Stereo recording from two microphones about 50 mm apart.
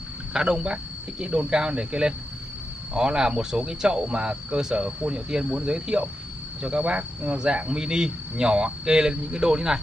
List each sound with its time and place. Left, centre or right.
0.3 s speech: centre